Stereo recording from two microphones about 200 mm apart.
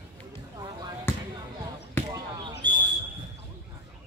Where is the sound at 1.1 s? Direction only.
10° left (ahead or behind).